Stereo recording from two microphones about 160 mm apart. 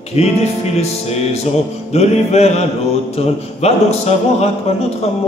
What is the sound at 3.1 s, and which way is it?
Speech, 40° left (ahead or behind).